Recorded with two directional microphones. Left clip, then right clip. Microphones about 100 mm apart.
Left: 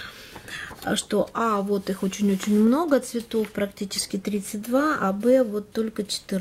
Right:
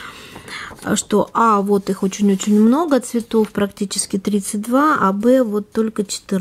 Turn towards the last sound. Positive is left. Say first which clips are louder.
# right 6 dB
turn(degrees=-30)  # may be behind; listen again after turning